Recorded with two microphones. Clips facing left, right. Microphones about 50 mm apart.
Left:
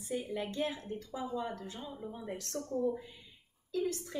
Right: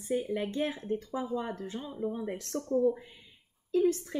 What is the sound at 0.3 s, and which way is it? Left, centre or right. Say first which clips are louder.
Speech: right 4 dB; right.